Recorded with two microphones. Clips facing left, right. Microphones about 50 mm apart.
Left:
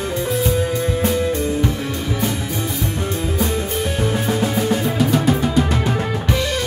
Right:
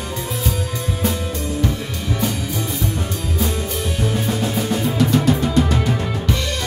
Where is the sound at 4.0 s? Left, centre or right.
Centre.